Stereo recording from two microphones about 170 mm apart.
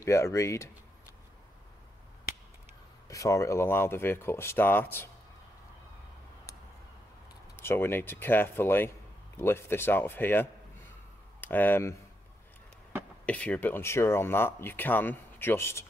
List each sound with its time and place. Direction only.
0.0 s speech: 15° left (ahead or behind)
3.1 s speech: 20° left (ahead or behind)
7.5 s speech: 15° left (ahead or behind)
13.2 s speech: 10° left (ahead or behind)